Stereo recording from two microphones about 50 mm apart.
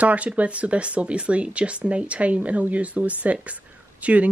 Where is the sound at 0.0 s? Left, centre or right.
Right.